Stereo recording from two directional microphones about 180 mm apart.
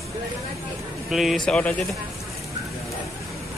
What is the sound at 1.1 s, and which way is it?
Speech, centre (ahead or behind).